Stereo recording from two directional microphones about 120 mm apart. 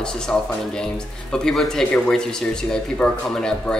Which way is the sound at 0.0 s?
5° left (ahead or behind).